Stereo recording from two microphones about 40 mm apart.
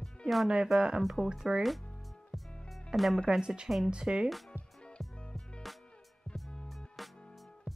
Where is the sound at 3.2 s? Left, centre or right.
Centre.